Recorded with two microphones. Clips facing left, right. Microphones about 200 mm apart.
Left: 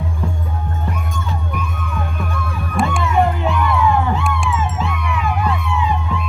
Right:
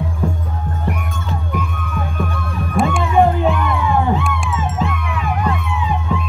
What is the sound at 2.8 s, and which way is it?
Music, centre (ahead or behind).